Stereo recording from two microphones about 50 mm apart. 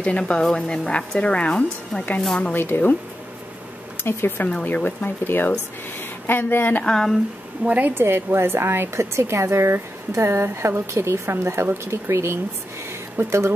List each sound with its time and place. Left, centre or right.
0.0 s a woman's voice: left
2.5 s a woman's voice: left
4.0 s a woman's voice: left
4.6 s a woman's voice: left
6.8 s speech: centre
7.6 s a woman's voice: right
7.9 s a woman's voice: right
13.2 s a woman's voice: right